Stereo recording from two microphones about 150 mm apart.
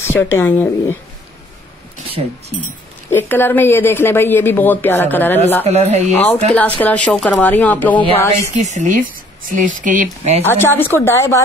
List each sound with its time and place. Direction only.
0.0 s a woman's voice: 15° left (ahead or behind)
3.1 s a woman's voice: 15° left (ahead or behind)
5.7 s speech: 45° right (ahead or behind)
6.1 s a woman's voice: 15° left (ahead or behind)
8.5 s speech: 50° right (ahead or behind)
10.4 s a woman's voice: 15° left (ahead or behind)